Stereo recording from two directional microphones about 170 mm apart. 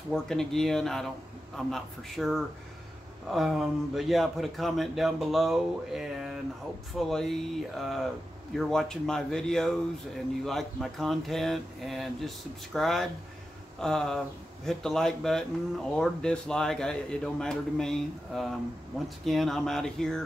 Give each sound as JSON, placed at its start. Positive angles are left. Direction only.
{"t": 0.1, "sound": "speech", "side_deg": 5}